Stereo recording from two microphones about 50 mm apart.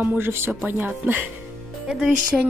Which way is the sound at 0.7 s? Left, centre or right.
Right.